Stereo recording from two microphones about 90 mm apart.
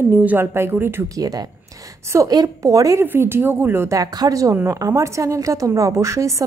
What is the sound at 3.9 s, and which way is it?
A woman's voice, 45° right (ahead or behind).